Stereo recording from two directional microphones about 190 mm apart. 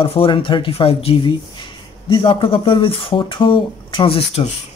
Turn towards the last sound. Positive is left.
turn(degrees=30)  # may be behind; listen again after turning